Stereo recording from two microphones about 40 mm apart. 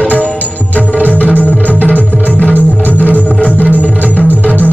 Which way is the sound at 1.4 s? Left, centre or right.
Right.